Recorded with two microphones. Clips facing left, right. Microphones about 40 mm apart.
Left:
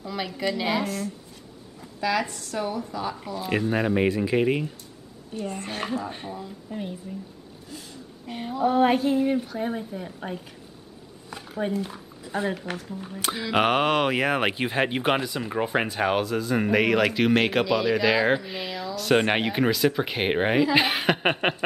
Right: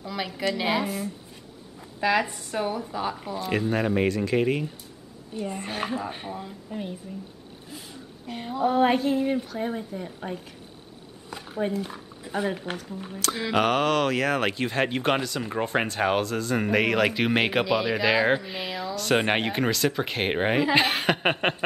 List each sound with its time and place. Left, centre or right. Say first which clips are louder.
0.0 s a woman's voice: even; centre
2.0 s speech: right 2 dB; right
3.3 s speech: left 1 dB; centre
5.5 s speech: even; centre
7.7 s speech: left 1 dB; centre
8.3 s speech: left 1 dB; centre
11.5 s speech: even; centre
13.5 s speech: left 1 dB; centre